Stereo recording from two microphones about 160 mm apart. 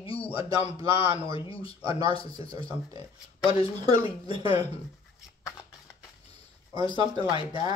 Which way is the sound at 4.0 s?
35° left (ahead or behind).